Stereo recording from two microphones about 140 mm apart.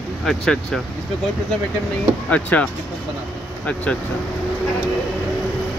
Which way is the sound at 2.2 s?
10° left (ahead or behind).